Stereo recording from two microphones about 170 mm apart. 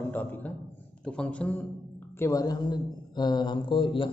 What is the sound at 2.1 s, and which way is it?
A man's voice, 15° left (ahead or behind).